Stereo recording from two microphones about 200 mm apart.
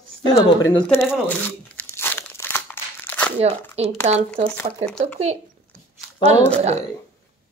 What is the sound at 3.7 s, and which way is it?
Speech, 30° right (ahead or behind).